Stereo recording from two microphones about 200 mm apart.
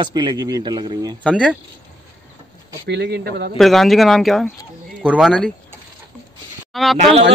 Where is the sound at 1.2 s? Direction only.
5° right (ahead or behind).